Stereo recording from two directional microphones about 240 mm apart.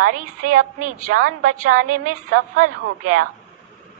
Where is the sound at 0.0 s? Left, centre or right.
Right.